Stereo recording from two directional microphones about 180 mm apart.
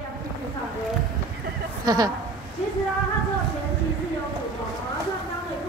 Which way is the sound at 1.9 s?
20° right (ahead or behind).